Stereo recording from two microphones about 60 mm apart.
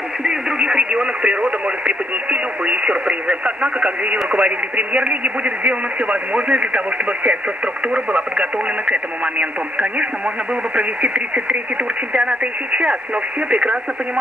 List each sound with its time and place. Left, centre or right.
0.2 s speech: centre